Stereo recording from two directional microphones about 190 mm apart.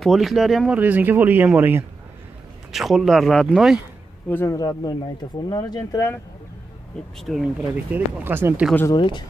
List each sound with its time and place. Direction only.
0.0 s speech: centre (ahead or behind)
4.3 s speech: 15° left (ahead or behind)
7.2 s speech: centre (ahead or behind)
8.9 s speech: 25° left (ahead or behind)